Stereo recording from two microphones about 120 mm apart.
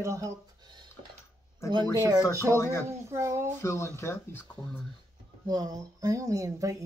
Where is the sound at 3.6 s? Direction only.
25° left (ahead or behind).